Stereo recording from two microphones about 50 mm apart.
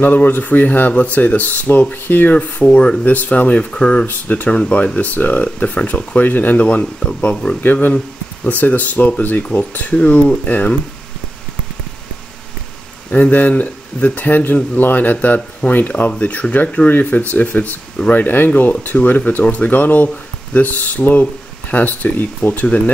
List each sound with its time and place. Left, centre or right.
0.0 s speech: left
3.1 s speech: left
4.0 s speech: left
13.1 s speech: left
19.7 s speech: left